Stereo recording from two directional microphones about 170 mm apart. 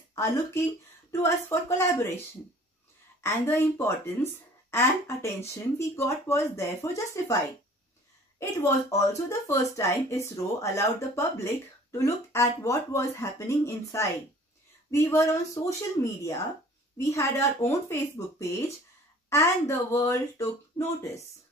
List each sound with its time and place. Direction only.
0.1 s speech: 15° left (ahead or behind)
3.2 s speech: 15° left (ahead or behind)
8.4 s speech: 15° left (ahead or behind)